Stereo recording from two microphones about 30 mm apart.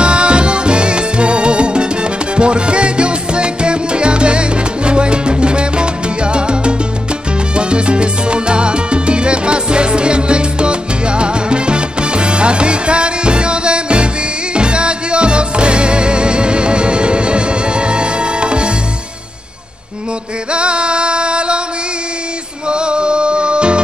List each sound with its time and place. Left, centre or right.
0.0 s music: right
7.5 s salsa music: right
14.5 s music: right
20.5 s music: right
22.7 s music: right